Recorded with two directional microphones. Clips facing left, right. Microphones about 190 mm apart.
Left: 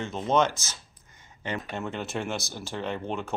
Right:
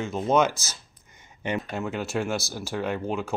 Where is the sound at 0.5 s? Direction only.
35° right (ahead or behind).